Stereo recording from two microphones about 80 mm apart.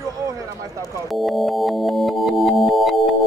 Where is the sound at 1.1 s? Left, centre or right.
Centre.